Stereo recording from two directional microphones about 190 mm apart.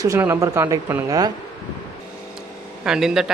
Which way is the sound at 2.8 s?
5° right (ahead or behind).